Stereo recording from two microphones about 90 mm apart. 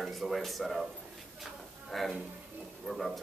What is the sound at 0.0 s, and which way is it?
Speech, centre (ahead or behind).